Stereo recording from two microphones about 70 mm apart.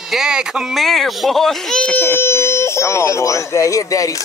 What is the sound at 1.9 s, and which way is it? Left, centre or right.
Speech, left.